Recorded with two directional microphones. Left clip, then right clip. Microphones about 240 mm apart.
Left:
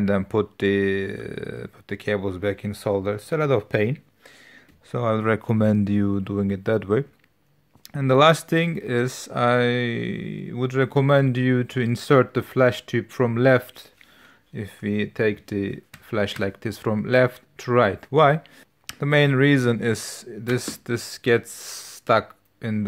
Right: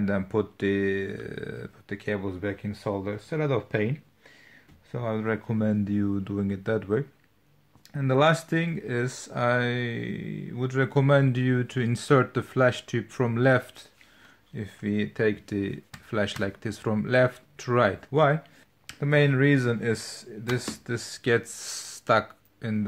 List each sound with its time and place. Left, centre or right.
0.0 s speech: left
4.9 s speech: left